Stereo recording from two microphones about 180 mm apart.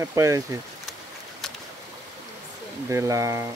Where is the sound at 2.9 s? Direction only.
15° right (ahead or behind).